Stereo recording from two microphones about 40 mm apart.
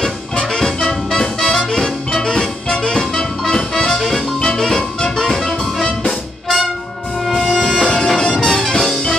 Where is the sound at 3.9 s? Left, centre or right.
Centre.